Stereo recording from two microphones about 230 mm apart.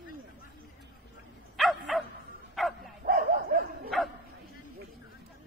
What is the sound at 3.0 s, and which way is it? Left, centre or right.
Bow-wow, right.